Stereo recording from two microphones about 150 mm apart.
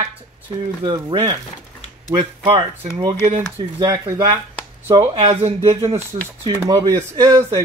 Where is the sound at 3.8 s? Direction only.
25° right (ahead or behind).